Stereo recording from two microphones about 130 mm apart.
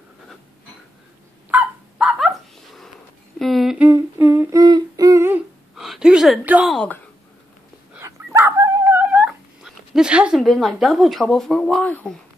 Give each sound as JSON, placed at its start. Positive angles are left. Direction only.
{"t": 1.5, "sound": "dog", "side_deg": -10}
{"t": 3.3, "sound": "a sound", "side_deg": 0}
{"t": 3.7, "sound": "humming", "side_deg": -10}
{"t": 5.8, "sound": "a sound", "side_deg": -5}
{"t": 6.7, "sound": "speech", "side_deg": 5}
{"t": 8.0, "sound": "dog", "side_deg": -20}